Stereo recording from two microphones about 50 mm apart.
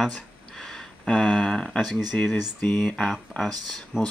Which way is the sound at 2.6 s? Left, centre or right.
Centre.